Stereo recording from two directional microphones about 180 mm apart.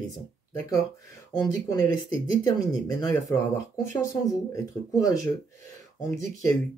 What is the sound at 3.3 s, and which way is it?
Speech, 20° left (ahead or behind).